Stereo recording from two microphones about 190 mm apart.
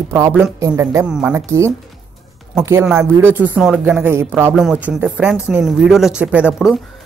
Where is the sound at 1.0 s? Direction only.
5° right (ahead or behind).